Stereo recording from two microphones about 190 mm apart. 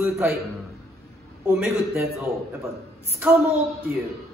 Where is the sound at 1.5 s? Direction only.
10° right (ahead or behind).